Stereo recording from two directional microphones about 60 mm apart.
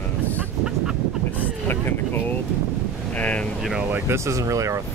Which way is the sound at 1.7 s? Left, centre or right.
Left.